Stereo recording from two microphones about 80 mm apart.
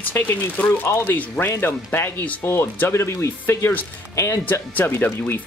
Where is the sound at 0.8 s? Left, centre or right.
Left.